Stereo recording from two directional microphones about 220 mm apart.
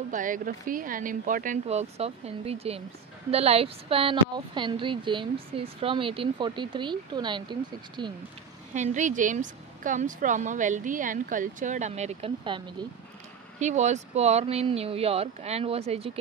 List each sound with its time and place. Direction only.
0.1 s a woman's voice: 35° right (ahead or behind); by 8.1 s 20° right (ahead or behind)
8.7 s a woman's voice: 35° right (ahead or behind)